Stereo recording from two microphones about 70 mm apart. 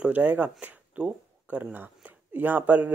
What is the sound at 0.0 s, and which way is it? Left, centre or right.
Speech, right.